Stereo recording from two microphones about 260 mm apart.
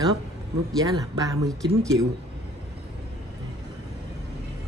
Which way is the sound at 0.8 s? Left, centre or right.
Centre.